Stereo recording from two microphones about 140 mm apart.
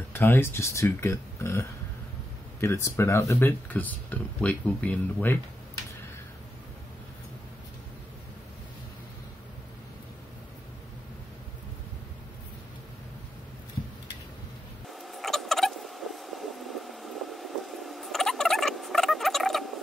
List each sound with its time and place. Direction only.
0.1 s speech: 15° left (ahead or behind)
14.9 s rodents: centre (ahead or behind)